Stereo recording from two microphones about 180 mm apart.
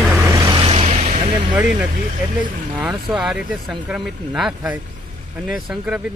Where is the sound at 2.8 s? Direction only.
5° right (ahead or behind).